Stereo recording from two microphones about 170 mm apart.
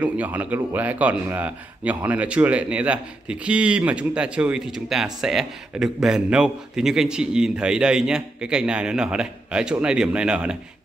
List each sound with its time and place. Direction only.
0.0 s a man's voice: 10° right (ahead or behind)